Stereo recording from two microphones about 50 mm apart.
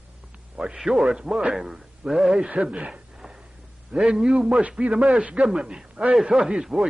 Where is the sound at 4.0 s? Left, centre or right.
Centre.